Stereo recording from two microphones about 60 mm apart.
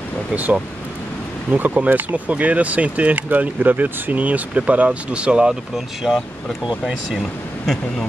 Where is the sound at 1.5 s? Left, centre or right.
Right.